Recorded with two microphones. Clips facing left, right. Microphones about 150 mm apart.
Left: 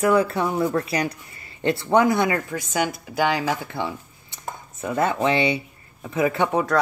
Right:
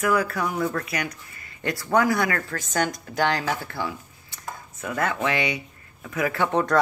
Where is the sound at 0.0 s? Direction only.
25° left (ahead or behind).